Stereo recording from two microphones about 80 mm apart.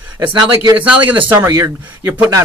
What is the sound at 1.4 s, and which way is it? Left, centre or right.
Speech, right.